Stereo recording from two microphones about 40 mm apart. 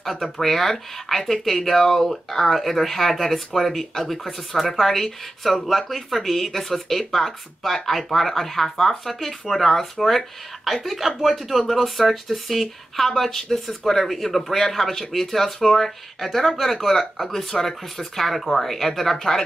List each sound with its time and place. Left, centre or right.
0.0 s speech: centre